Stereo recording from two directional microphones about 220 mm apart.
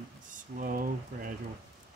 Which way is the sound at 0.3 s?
40° right (ahead or behind).